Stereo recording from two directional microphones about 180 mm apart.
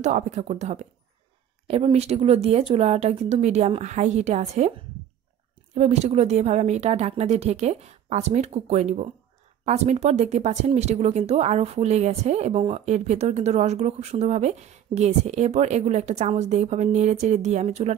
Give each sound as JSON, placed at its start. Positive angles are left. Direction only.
{"t": 0.0, "sound": "speech", "side_deg": -40}
{"t": 5.8, "sound": "speech", "side_deg": -35}